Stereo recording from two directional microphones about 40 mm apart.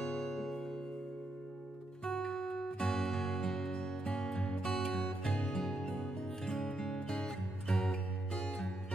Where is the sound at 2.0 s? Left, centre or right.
Centre.